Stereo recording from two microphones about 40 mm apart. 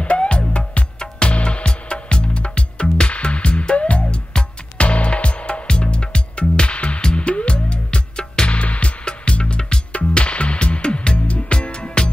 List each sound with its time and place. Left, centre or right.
0.0 s music: left
4.0 s music: left